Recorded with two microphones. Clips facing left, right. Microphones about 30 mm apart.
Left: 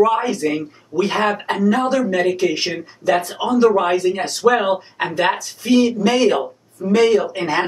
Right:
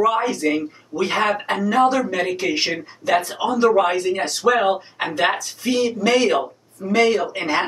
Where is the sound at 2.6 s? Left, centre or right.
Centre.